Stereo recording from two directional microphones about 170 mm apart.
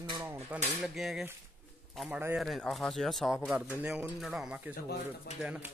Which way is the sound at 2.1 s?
15° right (ahead or behind).